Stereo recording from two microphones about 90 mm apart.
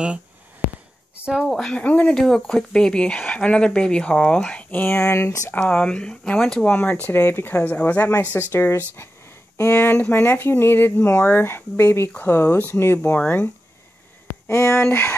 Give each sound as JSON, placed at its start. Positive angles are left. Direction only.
{"t": 1.4, "sound": "speech", "side_deg": 5}
{"t": 5.5, "sound": "speech", "side_deg": 15}
{"t": 14.5, "sound": "speech", "side_deg": 30}